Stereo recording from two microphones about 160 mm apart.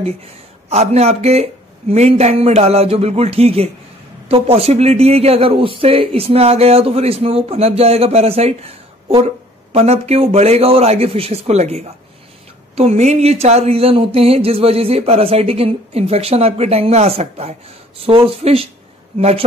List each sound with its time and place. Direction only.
0.0 s speech: 40° right (ahead or behind)